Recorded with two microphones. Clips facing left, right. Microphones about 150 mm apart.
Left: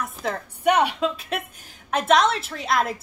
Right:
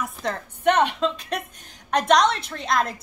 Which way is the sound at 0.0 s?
5° left (ahead or behind).